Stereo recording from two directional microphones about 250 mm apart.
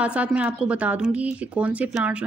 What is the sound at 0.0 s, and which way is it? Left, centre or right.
Speech, centre.